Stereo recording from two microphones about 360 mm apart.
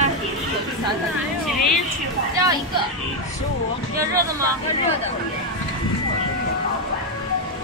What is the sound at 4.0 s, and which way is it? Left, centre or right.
Speech, centre.